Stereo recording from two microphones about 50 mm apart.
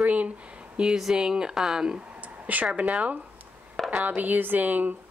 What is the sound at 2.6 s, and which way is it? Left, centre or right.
Speech, right.